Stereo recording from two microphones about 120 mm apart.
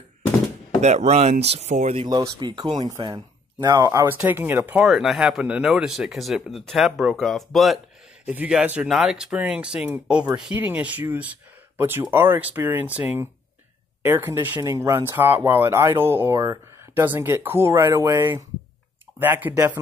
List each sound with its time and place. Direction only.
0.8 s speech: 65° right (ahead or behind)
2.0 s speech: 30° right (ahead or behind)
3.6 s speech: 30° right (ahead or behind)
4.8 s speech: centre (ahead or behind)
8.3 s speech: 10° right (ahead or behind)